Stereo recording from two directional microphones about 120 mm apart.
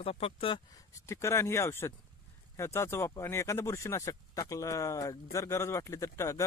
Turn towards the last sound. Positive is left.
turn(degrees=25)  # may be behind; listen again after turning